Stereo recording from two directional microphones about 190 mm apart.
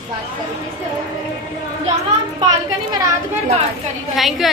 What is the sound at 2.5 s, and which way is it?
Speech, 20° right (ahead or behind).